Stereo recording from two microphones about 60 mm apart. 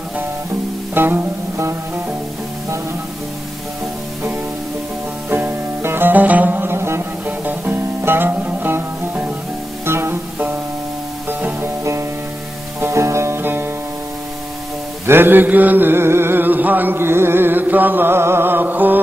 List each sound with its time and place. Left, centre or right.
0.9 s music: right
5.3 s music: right
15.0 s mantra: right